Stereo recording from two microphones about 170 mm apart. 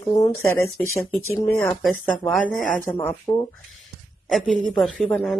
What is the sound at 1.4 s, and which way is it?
Speech, 15° left (ahead or behind).